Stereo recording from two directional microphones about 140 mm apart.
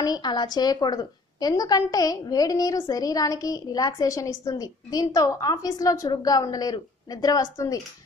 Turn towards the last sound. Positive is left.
turn(degrees=25)  # may be behind; listen again after turning